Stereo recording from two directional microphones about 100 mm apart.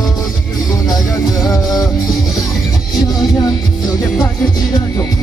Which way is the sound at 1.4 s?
40° left (ahead or behind).